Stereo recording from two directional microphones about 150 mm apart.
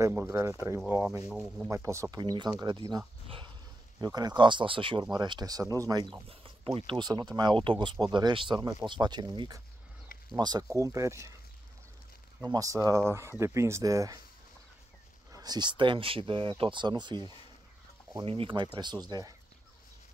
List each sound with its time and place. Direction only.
0.0 s speech: 15° right (ahead or behind)
0.7 s speech: 10° right (ahead or behind)
1.7 s speech: 20° right (ahead or behind)
3.3 s a sound: 35° right (ahead or behind)
4.0 s speech: 25° right (ahead or behind)
12.4 s speech: 20° right (ahead or behind)
15.3 s speech: 25° right (ahead or behind)